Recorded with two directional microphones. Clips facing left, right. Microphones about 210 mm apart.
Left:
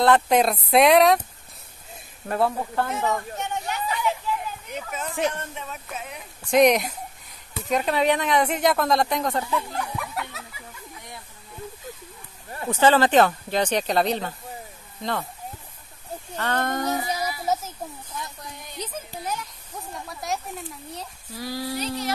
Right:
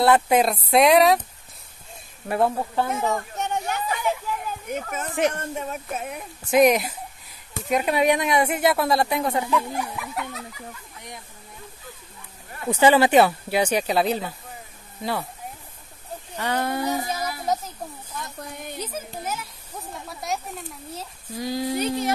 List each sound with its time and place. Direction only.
0.0 s speech: 5° right (ahead or behind)
2.2 s speech: 15° right (ahead or behind)
3.3 s a sound: 45° right (ahead or behind)
5.3 s speech: 45° right (ahead or behind)
6.5 s speech: 5° right (ahead or behind)
12.6 s speech: 10° right (ahead or behind)
16.3 s speech: 10° right (ahead or behind)
17.2 s speech: 5° left (ahead or behind)
18.4 s speech: 55° right (ahead or behind)
18.8 s speech: 5° right (ahead or behind)
21.4 s a sound: 20° right (ahead or behind)
21.7 s speech: 50° right (ahead or behind)